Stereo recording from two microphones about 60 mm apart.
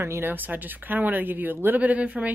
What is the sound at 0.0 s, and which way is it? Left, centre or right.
Speech, right.